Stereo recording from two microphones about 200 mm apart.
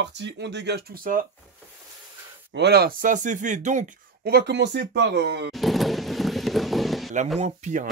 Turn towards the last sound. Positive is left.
turn(degrees=-35)  # may be behind; listen again after turning